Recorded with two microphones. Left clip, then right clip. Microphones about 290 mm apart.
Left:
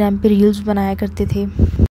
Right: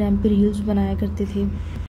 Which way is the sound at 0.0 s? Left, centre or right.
Left.